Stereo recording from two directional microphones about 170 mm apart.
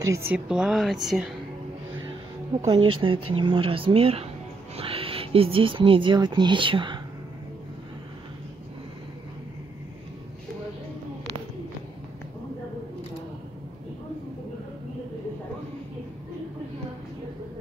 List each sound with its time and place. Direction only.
0.0 s speech: 15° right (ahead or behind)
0.5 s a woman's voice: 5° right (ahead or behind)
2.6 s speech: 30° right (ahead or behind)